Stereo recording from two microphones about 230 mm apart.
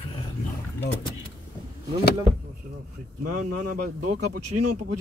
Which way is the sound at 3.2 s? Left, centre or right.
Right.